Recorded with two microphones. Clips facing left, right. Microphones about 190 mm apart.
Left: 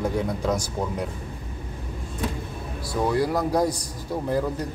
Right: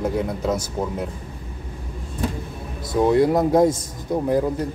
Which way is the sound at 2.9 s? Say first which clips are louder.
Right 6 dB; 20° right (ahead or behind).